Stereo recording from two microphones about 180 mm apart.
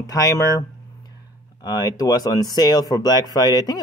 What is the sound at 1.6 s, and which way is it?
Speech, 20° left (ahead or behind).